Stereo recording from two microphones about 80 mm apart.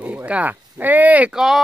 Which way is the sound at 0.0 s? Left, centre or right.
Centre.